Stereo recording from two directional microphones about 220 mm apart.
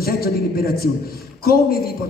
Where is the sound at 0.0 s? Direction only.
45° left (ahead or behind).